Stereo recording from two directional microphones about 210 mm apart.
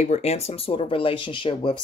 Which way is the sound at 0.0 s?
30° left (ahead or behind).